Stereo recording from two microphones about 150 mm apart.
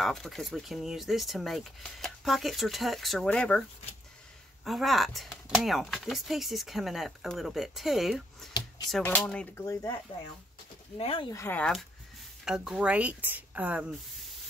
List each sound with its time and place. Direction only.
0.0 s speech: centre (ahead or behind)
4.6 s speech: centre (ahead or behind)
9.0 s speech: 10° left (ahead or behind)
9.7 s speech: 20° left (ahead or behind)
11.0 s speech: 40° left (ahead or behind)
11.3 s speech: 10° left (ahead or behind)
12.4 s speech: 5° right (ahead or behind)